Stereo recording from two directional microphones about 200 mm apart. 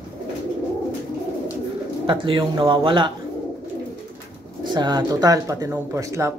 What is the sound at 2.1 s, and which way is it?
Speech, 25° right (ahead or behind).